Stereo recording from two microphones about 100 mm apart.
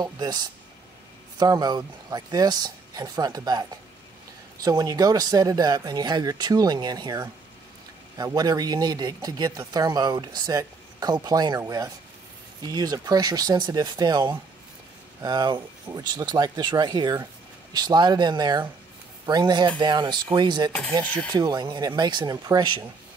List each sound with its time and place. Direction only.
0.0 s speech: 45° right (ahead or behind)